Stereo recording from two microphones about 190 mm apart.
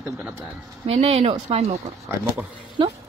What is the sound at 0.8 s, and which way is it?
Speech, 30° right (ahead or behind).